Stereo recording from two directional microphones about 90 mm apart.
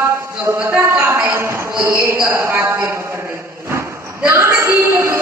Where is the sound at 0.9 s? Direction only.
20° right (ahead or behind).